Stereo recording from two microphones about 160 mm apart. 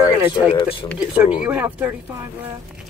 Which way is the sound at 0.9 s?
10° right (ahead or behind).